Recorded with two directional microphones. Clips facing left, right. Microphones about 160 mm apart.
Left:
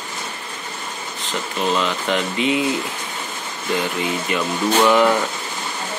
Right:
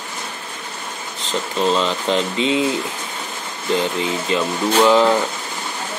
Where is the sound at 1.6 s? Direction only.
30° right (ahead or behind).